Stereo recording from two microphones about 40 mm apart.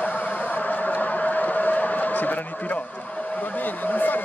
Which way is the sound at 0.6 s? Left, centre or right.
Left.